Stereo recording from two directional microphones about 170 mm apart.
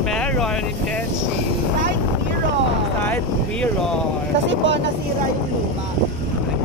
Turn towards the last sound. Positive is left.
turn(degrees=-90)